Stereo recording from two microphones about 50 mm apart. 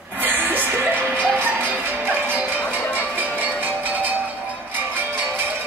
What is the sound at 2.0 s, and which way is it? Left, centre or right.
Music, right.